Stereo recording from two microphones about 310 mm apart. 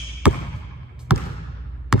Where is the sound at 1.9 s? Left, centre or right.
Centre.